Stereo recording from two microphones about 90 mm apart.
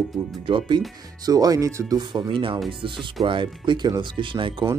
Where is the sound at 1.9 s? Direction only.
55° right (ahead or behind).